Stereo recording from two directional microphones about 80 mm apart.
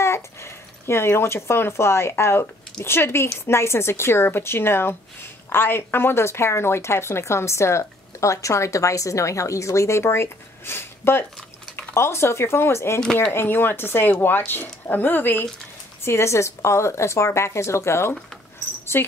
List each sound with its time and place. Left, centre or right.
0.0 s speech: left
16.0 s speech: left